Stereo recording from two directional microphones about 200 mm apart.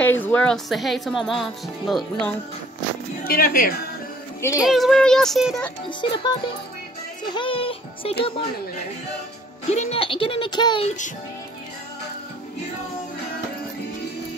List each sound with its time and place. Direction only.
0.1 s speech: 10° left (ahead or behind)
3.3 s speech: 45° left (ahead or behind)
4.4 s speech: 15° left (ahead or behind)
4.6 s speech: centre (ahead or behind)
5.9 s speech: 25° left (ahead or behind)
9.7 s speech: 30° left (ahead or behind)